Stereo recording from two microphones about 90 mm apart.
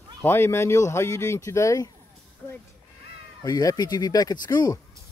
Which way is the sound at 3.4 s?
45° left (ahead or behind).